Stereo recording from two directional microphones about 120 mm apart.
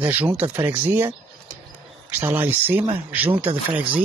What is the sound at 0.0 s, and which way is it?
Speech, 15° right (ahead or behind).